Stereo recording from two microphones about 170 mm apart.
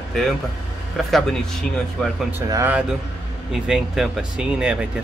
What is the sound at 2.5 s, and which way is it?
Speech, 20° right (ahead or behind).